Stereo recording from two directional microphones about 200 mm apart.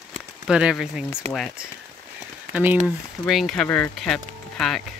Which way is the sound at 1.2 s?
30° right (ahead or behind).